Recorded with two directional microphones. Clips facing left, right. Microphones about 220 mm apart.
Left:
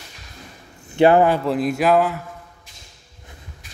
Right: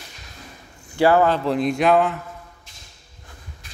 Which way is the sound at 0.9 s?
20° left (ahead or behind).